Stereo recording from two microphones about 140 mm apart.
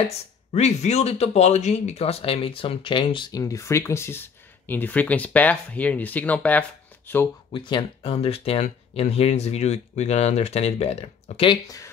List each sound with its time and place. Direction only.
0.1 s speech: 50° left (ahead or behind); by 7.2 s 15° left (ahead or behind)
7.5 s speech: 35° left (ahead or behind)
11.4 s speech: 25° left (ahead or behind)